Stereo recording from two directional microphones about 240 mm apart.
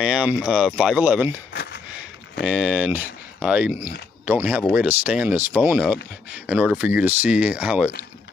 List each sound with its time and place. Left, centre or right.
0.0 s speech: centre
1.5 s a sound: left
2.4 s speech: centre